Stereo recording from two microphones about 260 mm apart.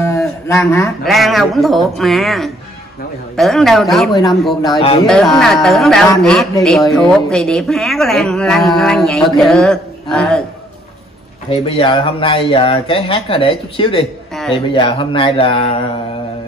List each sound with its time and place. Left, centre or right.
0.0 s a sound: centre
1.0 s speech: centre
11.5 s speech: centre